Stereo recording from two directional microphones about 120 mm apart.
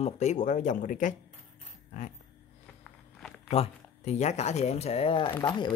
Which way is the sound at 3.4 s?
55° left (ahead or behind).